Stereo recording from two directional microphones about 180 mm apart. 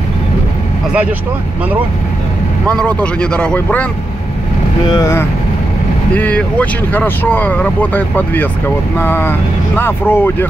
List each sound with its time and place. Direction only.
2.7 s speech: 5° left (ahead or behind)
4.8 s speech: 20° left (ahead or behind)
6.1 s speech: 10° left (ahead or behind)